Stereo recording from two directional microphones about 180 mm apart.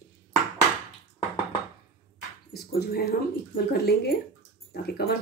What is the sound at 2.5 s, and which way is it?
Dog, 60° left (ahead or behind).